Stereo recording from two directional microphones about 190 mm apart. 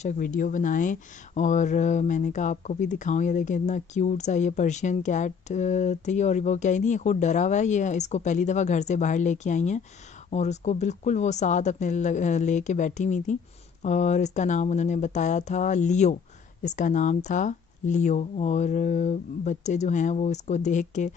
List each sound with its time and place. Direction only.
0.0 s speech: 45° left (ahead or behind)